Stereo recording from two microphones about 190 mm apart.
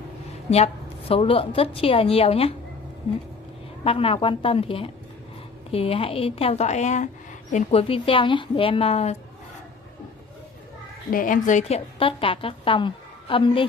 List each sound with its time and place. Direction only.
0.5 s a woman's voice: 30° left (ahead or behind)
3.8 s a woman's voice: 30° left (ahead or behind)
11.1 s a woman's voice: 45° left (ahead or behind); by 13.7 s 30° left (ahead or behind)